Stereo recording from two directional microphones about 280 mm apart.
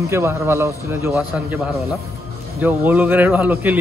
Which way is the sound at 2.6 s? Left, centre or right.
Centre.